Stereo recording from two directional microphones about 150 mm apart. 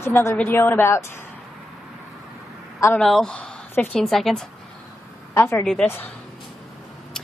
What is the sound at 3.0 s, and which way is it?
A woman's voice, 5° left (ahead or behind).